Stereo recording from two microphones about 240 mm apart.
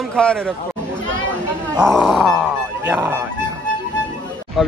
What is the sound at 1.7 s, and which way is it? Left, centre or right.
Speech, centre.